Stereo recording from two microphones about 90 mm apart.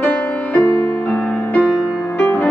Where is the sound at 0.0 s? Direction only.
15° left (ahead or behind).